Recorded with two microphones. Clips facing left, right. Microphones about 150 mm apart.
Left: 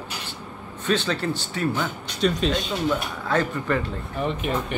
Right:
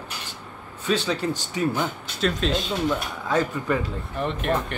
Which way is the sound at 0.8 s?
10° right (ahead or behind).